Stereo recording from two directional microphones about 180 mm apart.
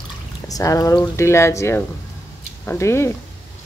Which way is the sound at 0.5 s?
20° left (ahead or behind).